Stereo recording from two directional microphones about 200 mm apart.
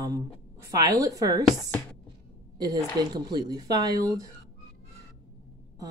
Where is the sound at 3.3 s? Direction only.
20° right (ahead or behind).